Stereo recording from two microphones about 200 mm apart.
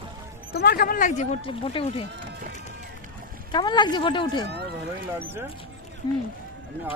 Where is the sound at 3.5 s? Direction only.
20° left (ahead or behind).